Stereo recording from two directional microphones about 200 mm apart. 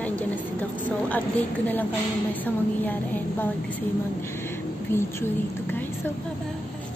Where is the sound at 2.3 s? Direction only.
10° left (ahead or behind).